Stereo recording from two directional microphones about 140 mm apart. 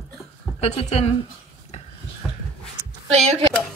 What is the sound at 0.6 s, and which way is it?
Speech, 50° left (ahead or behind).